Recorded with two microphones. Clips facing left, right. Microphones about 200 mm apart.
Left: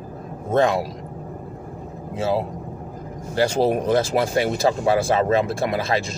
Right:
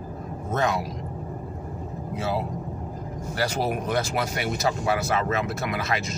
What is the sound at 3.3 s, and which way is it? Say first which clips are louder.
Speech: left 7 dB; 25° left (ahead or behind).